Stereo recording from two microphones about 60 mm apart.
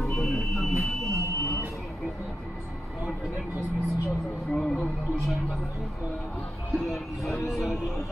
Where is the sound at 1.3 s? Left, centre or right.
Left.